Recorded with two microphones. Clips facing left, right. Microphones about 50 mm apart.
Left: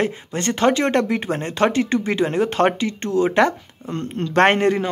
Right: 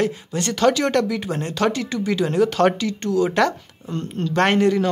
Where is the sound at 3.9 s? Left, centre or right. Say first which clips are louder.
Left 3 dB; left.